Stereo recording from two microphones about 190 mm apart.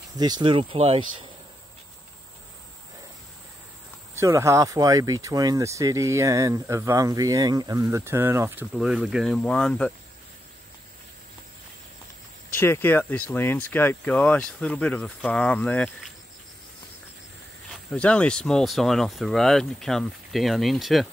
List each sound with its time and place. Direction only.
0.2 s speech: 25° right (ahead or behind)
4.1 s speech: 15° right (ahead or behind); by 9.9 s 5° left (ahead or behind)
12.5 s speech: 10° left (ahead or behind)
17.9 s speech: 5° left (ahead or behind)